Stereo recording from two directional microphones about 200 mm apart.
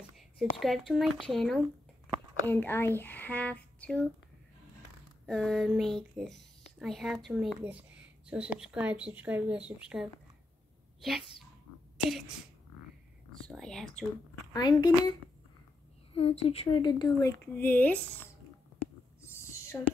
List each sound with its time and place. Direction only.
0.4 s a woman's voice: centre (ahead or behind)
5.2 s a woman's voice: centre (ahead or behind)
13.4 s speech: centre (ahead or behind)
14.5 s a woman's voice: 20° left (ahead or behind)
16.1 s speech: 30° left (ahead or behind); by 18.3 s 5° left (ahead or behind)
19.3 s whispering: 15° left (ahead or behind)